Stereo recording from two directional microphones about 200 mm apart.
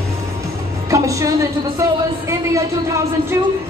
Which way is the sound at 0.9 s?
15° right (ahead or behind).